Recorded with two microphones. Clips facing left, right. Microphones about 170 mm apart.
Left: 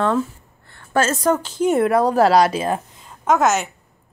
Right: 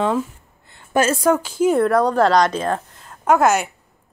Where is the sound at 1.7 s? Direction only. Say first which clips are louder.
Left 1 dB; 5° left (ahead or behind).